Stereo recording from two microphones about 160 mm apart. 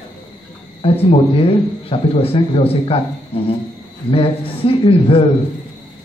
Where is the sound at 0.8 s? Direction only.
35° left (ahead or behind).